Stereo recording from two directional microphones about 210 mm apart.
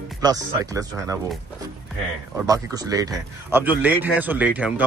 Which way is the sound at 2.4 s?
15° right (ahead or behind).